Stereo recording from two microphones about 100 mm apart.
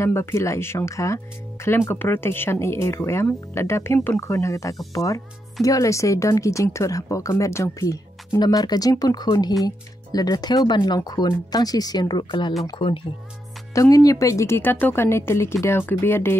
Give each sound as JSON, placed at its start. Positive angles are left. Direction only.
{"t": 0.0, "sound": "a woman's voice", "side_deg": 30}
{"t": 13.7, "sound": "a woman's voice", "side_deg": 35}